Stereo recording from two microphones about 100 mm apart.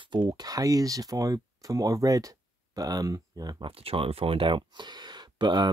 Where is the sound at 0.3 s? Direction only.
35° right (ahead or behind).